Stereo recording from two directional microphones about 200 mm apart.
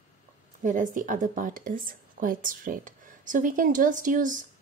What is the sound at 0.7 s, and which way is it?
A woman's voice, 40° right (ahead or behind).